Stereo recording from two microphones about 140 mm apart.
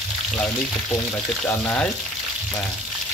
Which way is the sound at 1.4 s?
15° left (ahead or behind).